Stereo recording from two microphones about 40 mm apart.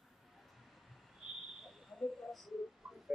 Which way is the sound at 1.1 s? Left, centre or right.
Centre.